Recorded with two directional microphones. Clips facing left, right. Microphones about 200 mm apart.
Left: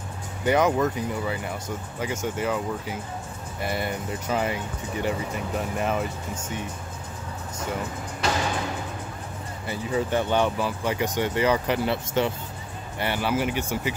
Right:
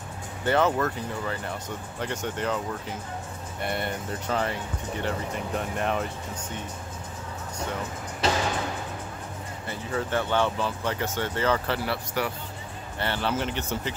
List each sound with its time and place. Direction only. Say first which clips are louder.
0.5 s speech: left 2 dB; 15° left (ahead or behind)
9.7 s speech: left 4 dB; 15° left (ahead or behind)
13.0 s speech: left 3 dB; 10° left (ahead or behind)